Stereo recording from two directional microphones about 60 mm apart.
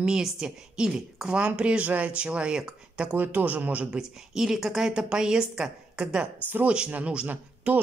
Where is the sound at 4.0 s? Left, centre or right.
Centre.